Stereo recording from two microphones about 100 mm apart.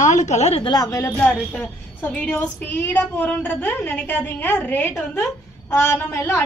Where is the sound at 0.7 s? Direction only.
35° left (ahead or behind).